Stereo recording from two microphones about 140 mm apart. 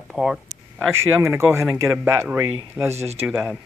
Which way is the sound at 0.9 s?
20° right (ahead or behind).